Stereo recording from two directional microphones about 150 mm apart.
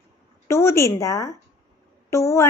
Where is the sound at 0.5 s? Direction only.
20° left (ahead or behind).